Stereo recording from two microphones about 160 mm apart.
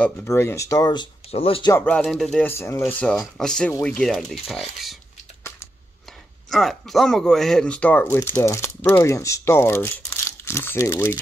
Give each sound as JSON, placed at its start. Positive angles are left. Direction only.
{"t": 0.0, "sound": "speech", "side_deg": 15}
{"t": 1.3, "sound": "speech", "side_deg": 35}
{"t": 1.7, "sound": "speech", "side_deg": 10}
{"t": 2.4, "sound": "speech", "side_deg": 15}
{"t": 6.5, "sound": "speech", "side_deg": 0}